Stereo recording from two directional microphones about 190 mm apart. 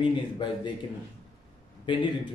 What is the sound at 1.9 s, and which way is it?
Speech, 25° left (ahead or behind).